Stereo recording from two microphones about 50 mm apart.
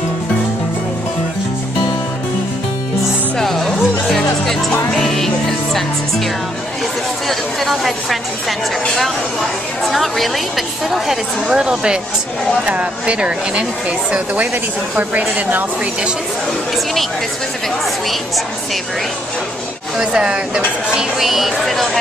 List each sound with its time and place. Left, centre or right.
3.3 s music: centre
7.2 s a woman's voice: centre
9.8 s a woman's voice: centre
11.5 s a woman's voice: centre; by 16.1 s right
20.0 s speech: centre